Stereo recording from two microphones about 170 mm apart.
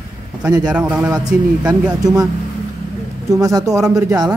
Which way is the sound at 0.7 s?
5° right (ahead or behind).